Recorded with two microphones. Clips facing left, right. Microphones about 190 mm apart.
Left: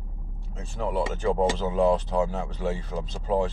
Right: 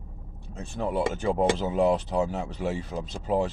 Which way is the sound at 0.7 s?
15° right (ahead or behind).